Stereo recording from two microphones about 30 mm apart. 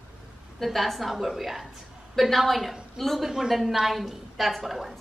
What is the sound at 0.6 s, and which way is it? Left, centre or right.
A woman's voice, centre.